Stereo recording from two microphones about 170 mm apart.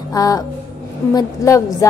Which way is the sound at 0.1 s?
20° left (ahead or behind).